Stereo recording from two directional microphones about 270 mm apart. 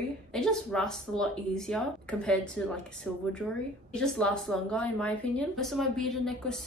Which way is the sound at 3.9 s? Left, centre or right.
Centre.